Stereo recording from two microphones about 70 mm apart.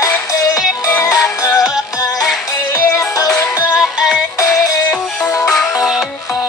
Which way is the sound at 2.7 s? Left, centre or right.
Left.